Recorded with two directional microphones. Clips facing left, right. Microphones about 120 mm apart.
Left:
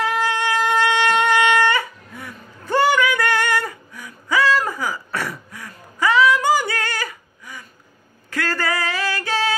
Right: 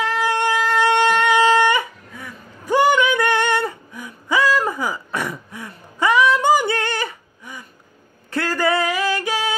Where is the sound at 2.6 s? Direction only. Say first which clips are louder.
Right 1 dB; 15° right (ahead or behind).